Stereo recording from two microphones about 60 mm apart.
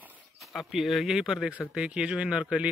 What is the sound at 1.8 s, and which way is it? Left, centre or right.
Speech, centre.